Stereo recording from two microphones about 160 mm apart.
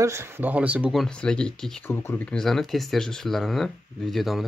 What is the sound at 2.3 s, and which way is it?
Speech, 5° left (ahead or behind).